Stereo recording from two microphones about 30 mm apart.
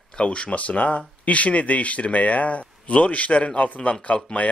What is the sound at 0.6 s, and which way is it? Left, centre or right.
Speech, left.